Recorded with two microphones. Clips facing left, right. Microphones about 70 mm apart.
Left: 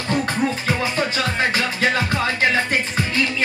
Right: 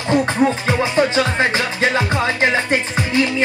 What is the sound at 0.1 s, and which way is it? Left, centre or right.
Music, right.